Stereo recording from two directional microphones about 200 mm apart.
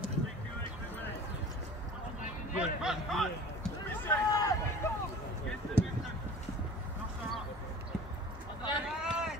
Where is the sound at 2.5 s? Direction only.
Centre (ahead or behind).